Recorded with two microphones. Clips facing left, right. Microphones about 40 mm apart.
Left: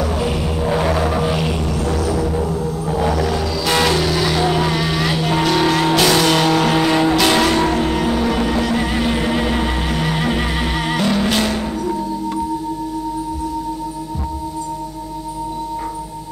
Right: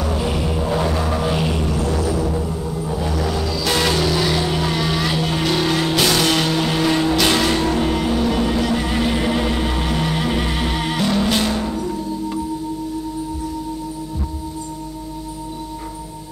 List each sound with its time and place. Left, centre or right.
0.0 s music: centre
0.7 s a sound: centre
2.0 s music: centre
2.9 s vehicle: left
3.2 s vehicle: centre
7.3 s music: centre